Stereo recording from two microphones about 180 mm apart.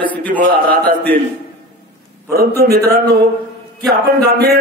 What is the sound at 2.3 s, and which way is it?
Speech, 60° right (ahead or behind).